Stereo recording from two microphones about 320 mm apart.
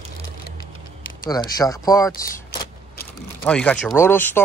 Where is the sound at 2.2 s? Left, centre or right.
Centre.